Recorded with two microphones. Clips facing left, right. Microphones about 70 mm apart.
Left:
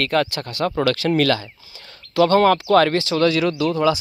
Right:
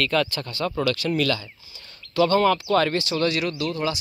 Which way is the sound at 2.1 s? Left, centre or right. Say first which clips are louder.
Left 4 dB; left.